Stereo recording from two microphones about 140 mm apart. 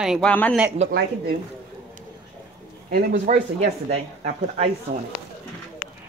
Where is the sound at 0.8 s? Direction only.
50° right (ahead or behind).